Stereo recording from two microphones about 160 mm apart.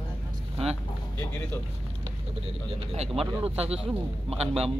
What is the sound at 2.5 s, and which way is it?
A man's voice, 40° right (ahead or behind).